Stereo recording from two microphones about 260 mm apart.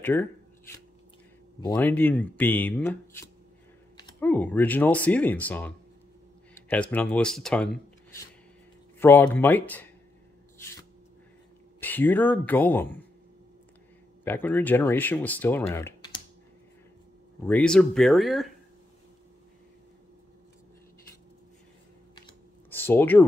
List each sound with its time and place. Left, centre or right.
0.0 s speech: centre
1.6 s speech: centre
11.8 s speech: centre
14.2 s speech: centre
15.7 s typing: centre
17.5 s speech: centre
22.1 s a sound: centre